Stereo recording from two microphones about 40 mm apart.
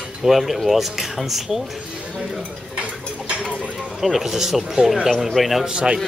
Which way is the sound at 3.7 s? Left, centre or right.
Centre.